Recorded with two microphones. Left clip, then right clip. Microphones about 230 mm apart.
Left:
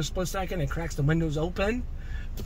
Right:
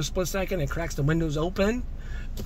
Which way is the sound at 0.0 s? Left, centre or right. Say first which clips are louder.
Right 3 dB; right.